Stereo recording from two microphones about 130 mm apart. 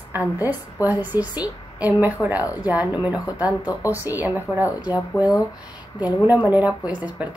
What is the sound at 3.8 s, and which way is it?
Speech, 15° right (ahead or behind).